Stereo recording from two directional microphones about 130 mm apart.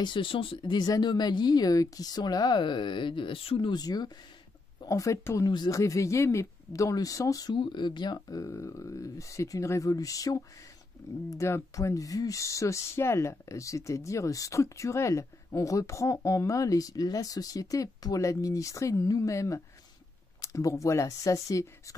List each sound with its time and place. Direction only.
0.0 s speech: 40° left (ahead or behind)
7.5 s speech: 40° left (ahead or behind)